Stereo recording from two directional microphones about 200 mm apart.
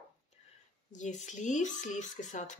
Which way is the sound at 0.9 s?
40° left (ahead or behind).